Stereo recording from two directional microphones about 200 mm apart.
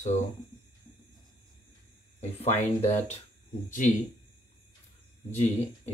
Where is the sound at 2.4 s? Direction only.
30° left (ahead or behind).